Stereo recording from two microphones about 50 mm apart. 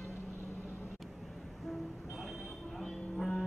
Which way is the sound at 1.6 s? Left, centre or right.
Centre.